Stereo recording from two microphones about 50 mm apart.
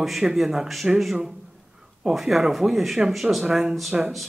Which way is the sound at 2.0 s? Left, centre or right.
Centre.